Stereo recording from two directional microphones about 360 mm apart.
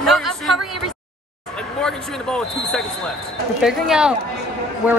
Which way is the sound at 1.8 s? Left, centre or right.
Centre.